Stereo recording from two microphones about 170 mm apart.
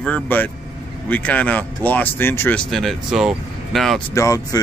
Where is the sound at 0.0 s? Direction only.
10° left (ahead or behind).